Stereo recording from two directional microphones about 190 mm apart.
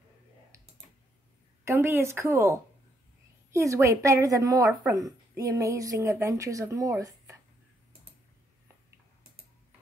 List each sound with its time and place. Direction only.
0.5 s typing: 15° right (ahead or behind)
1.6 s a woman's voice: 15° right (ahead or behind)